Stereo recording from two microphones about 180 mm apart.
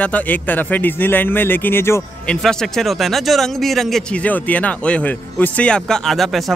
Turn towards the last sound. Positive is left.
turn(degrees=0)  # may be behind; listen again after turning